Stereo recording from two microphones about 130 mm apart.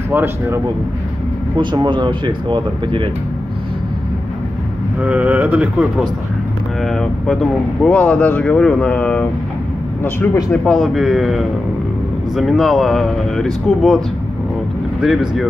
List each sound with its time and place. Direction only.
0.1 s speech: 20° right (ahead or behind)
1.6 s speech: 35° right (ahead or behind)
5.0 s speech: 10° right (ahead or behind)
6.8 s speech: 5° left (ahead or behind)
10.5 s speech: 5° left (ahead or behind)